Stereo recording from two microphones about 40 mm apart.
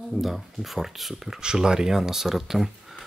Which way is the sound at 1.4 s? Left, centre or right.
Centre.